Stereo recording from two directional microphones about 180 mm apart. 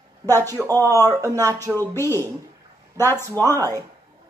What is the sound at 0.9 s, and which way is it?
Speech, 20° right (ahead or behind).